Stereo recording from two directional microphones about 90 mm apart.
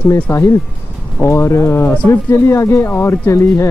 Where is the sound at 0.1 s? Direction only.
30° left (ahead or behind).